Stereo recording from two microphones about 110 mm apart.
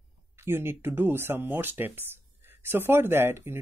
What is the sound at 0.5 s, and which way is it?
Speech, 20° right (ahead or behind).